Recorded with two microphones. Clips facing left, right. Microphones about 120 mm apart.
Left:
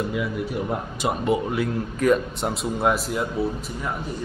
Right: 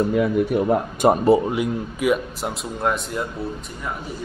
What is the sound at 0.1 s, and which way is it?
Speech, 50° right (ahead or behind).